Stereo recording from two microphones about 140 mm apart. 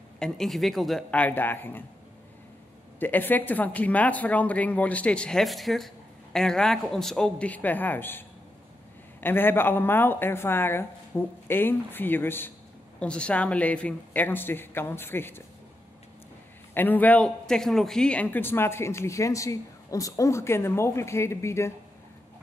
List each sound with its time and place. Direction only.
0.2 s speech: centre (ahead or behind)
3.0 s a man's voice: 15° left (ahead or behind)
16.7 s a man's voice: 15° left (ahead or behind)